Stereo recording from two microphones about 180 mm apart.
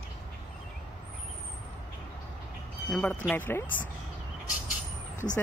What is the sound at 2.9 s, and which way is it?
Speech, 5° left (ahead or behind).